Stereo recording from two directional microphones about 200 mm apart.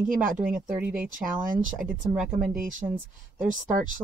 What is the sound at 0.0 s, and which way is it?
Speech, 40° right (ahead or behind).